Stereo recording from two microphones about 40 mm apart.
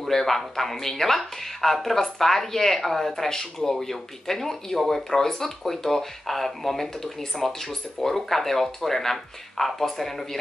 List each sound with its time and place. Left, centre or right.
0.1 s speech: centre